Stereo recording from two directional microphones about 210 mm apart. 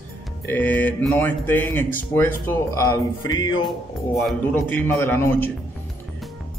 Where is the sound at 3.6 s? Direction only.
Centre (ahead or behind).